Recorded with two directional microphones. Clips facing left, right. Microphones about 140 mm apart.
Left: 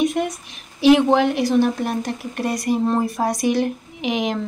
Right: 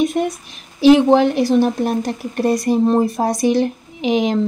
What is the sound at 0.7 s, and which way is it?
A woman's voice, 35° right (ahead or behind).